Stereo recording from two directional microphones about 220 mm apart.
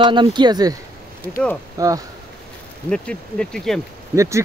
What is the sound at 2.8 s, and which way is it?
Speech, 5° left (ahead or behind).